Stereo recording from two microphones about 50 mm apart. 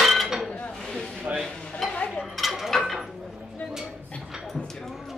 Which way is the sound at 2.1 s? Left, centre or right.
Centre.